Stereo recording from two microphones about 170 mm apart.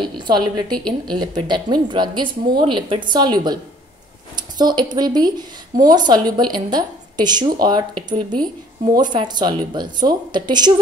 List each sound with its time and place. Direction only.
0.0 s speech: 25° right (ahead or behind)
0.7 s speech: 5° left (ahead or behind)
1.1 s speech: 25° right (ahead or behind)
4.6 s speech: 25° right (ahead or behind)
8.9 s speech: 25° right (ahead or behind)